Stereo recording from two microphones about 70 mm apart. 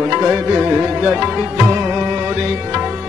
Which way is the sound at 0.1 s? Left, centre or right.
Centre.